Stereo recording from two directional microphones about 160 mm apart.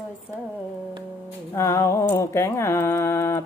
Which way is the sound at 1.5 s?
15° left (ahead or behind).